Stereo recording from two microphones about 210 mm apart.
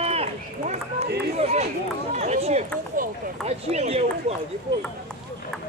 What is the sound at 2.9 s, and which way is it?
Speech, 35° right (ahead or behind).